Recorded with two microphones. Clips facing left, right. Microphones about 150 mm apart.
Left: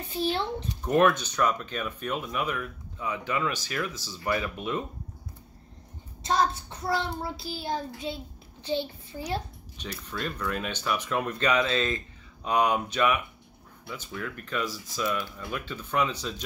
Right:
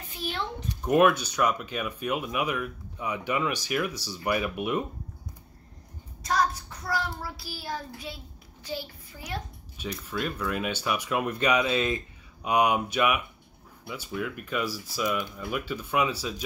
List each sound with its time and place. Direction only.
0.1 s a child's voice: 30° left (ahead or behind)
0.8 s speech: 10° right (ahead or behind)
6.2 s child singing: 25° left (ahead or behind)
10.0 s speech: 5° right (ahead or behind)